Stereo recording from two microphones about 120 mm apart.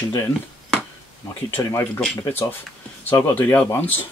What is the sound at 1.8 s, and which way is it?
Speech, 5° left (ahead or behind).